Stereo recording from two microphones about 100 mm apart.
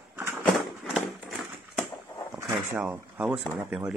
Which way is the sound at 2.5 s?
15° right (ahead or behind).